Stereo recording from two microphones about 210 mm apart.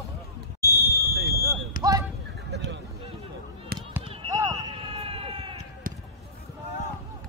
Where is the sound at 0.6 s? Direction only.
15° left (ahead or behind).